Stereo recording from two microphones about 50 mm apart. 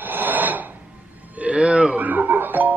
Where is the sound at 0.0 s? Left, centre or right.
Right.